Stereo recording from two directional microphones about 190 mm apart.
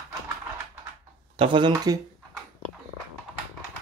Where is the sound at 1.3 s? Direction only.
30° right (ahead or behind).